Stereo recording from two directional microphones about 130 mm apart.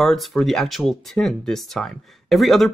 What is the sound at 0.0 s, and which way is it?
Speech, centre (ahead or behind).